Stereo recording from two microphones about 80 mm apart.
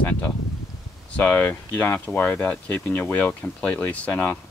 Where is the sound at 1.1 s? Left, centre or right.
Left.